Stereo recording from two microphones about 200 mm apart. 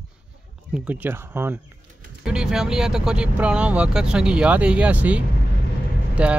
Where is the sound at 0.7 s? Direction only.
5° right (ahead or behind).